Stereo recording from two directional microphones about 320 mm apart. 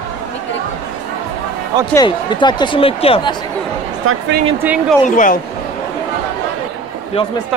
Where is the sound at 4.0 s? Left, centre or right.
Right.